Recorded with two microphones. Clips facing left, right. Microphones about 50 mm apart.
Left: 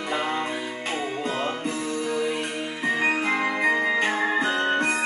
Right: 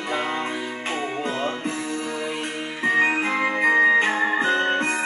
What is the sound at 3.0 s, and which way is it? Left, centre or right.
Organ, right.